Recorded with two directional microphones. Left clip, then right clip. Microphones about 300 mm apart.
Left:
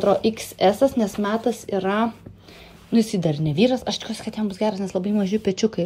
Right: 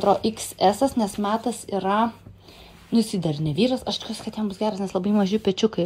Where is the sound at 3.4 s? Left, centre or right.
Centre.